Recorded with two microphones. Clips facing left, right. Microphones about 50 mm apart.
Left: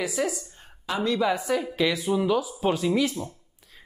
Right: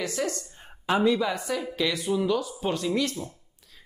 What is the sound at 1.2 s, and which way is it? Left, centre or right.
Speech, centre.